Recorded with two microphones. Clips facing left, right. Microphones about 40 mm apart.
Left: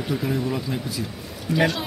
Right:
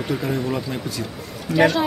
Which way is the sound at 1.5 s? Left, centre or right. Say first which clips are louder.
Right 4 dB; centre.